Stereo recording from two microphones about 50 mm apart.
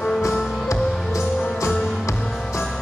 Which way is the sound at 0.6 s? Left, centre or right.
Left.